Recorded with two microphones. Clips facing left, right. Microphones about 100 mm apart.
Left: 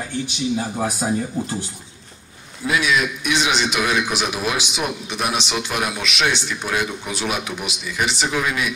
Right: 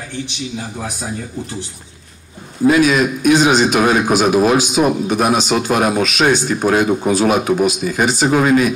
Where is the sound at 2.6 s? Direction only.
45° right (ahead or behind).